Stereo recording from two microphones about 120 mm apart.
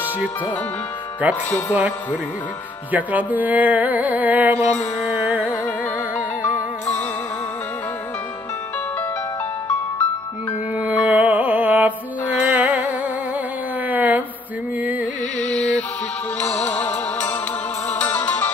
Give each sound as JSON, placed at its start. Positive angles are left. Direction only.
{"t": 1.2, "sound": "music", "side_deg": -15}
{"t": 6.1, "sound": "music", "side_deg": 15}
{"t": 10.8, "sound": "music", "side_deg": -15}
{"t": 13.8, "sound": "a sound", "side_deg": -15}
{"t": 14.8, "sound": "music", "side_deg": -15}
{"t": 15.4, "sound": "carnatic music", "side_deg": 10}
{"t": 16.6, "sound": "music", "side_deg": 15}